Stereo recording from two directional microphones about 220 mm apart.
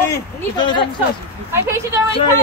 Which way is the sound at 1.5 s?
10° right (ahead or behind).